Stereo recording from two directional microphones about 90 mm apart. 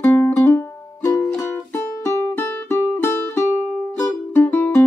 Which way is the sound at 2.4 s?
15° left (ahead or behind).